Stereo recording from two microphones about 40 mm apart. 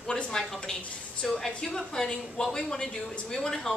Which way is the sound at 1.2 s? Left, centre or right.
Centre.